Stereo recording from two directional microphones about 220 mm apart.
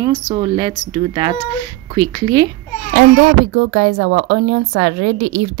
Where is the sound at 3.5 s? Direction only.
50° right (ahead or behind).